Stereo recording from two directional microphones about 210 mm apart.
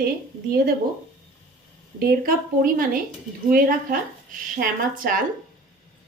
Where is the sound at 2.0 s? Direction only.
45° right (ahead or behind).